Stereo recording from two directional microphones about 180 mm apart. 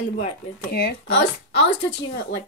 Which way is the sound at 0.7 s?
60° left (ahead or behind).